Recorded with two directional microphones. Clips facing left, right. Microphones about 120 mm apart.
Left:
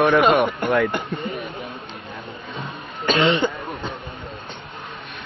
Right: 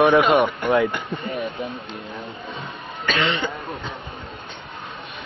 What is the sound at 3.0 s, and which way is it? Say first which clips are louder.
Speech: left 5 dB; 30° left (ahead or behind).